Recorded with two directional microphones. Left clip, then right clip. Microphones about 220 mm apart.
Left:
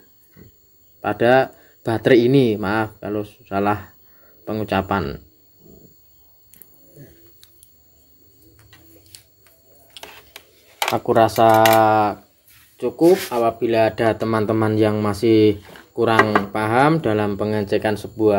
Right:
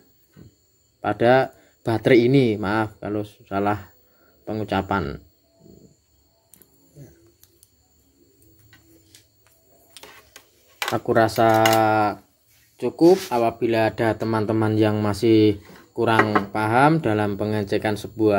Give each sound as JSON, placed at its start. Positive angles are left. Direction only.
{"t": 1.0, "sound": "speech", "side_deg": -5}
{"t": 10.9, "sound": "speech", "side_deg": 0}
{"t": 12.7, "sound": "speech", "side_deg": -15}